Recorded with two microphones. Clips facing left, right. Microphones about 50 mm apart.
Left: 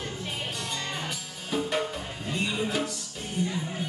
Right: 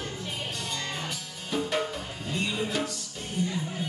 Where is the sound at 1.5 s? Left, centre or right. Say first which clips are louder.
Even; centre.